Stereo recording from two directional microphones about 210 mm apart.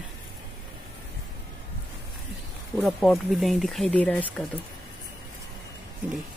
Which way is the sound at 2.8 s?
Centre (ahead or behind).